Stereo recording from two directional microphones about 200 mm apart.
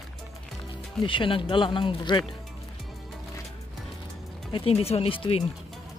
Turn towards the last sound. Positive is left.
turn(degrees=25)  # may be behind; listen again after turning